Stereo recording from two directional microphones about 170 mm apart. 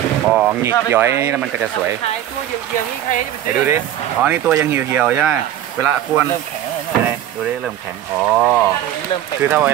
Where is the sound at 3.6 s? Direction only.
10° right (ahead or behind).